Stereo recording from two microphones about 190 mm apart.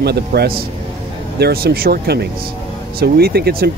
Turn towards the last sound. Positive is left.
turn(degrees=-55)  # may be behind; listen again after turning